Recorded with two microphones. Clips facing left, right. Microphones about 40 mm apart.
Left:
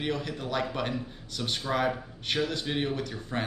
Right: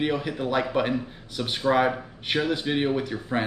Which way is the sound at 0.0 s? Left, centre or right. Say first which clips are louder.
Right 6 dB; centre.